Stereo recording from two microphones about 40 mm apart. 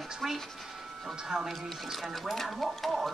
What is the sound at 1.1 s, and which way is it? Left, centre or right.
Speech, centre.